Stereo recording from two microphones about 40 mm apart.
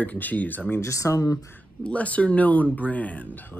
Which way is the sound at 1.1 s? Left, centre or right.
Left.